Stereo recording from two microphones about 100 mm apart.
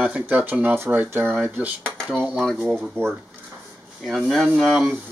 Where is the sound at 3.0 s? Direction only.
25° right (ahead or behind).